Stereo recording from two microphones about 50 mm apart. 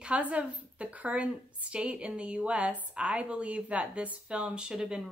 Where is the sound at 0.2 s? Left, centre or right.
Right.